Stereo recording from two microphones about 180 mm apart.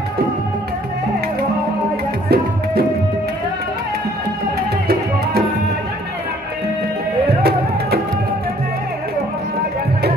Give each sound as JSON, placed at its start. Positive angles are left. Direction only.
{"t": 2.2, "sound": "music", "side_deg": -60}